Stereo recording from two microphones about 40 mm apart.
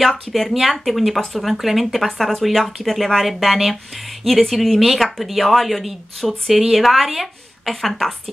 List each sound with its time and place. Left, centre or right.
0.3 s a woman's voice: centre